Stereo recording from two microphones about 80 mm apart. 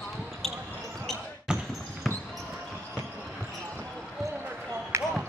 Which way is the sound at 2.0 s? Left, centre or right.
Centre.